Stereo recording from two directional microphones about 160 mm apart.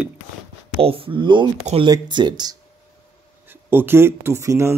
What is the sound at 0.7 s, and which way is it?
Speech, 35° right (ahead or behind).